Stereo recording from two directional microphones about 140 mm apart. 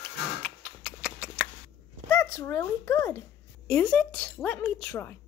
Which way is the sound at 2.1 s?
15° left (ahead or behind).